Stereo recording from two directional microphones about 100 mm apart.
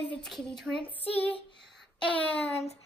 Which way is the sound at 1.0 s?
65° left (ahead or behind).